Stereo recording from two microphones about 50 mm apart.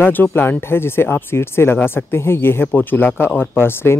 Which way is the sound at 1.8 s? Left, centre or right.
Left.